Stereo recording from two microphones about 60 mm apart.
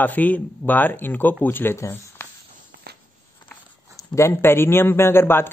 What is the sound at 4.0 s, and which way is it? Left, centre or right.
Speech, left.